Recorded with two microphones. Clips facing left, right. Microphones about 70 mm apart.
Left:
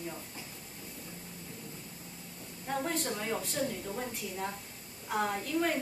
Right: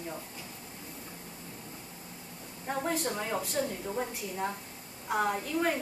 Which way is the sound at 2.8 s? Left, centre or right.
Centre.